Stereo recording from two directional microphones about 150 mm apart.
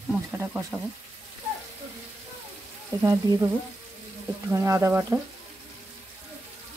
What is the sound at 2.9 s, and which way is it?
Speech, 25° right (ahead or behind).